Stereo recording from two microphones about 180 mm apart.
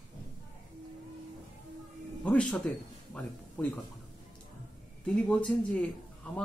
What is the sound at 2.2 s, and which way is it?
Speech, 5° left (ahead or behind).